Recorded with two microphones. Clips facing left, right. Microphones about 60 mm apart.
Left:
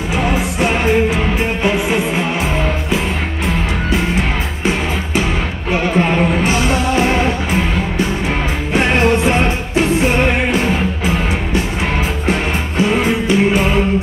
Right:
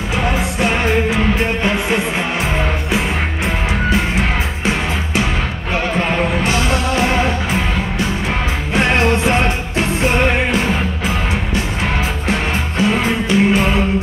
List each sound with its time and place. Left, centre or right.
0.2 s music: centre
5.7 s music: centre
8.7 s music: centre
12.3 s music: centre